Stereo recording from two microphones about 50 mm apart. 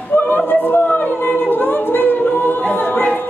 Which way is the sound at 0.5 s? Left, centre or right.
Left.